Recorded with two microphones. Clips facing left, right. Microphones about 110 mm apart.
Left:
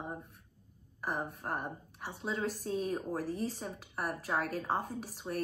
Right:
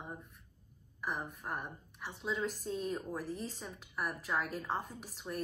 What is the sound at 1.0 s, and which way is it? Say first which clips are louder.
A woman's voice: left 3 dB; 50° left (ahead or behind).